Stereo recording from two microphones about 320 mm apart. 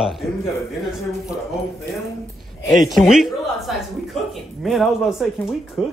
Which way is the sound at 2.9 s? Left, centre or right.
Centre.